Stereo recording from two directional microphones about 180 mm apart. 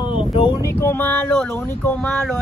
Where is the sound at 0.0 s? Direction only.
30° left (ahead or behind).